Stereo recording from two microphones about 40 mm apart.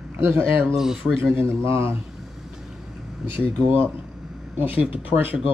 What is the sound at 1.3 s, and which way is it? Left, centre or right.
Speech, right.